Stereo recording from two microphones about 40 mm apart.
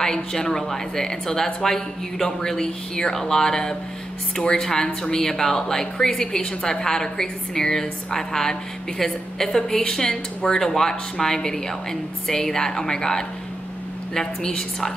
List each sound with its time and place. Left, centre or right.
0.0 s speech: centre